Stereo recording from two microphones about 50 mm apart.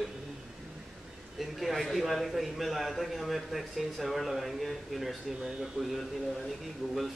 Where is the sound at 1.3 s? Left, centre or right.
Centre.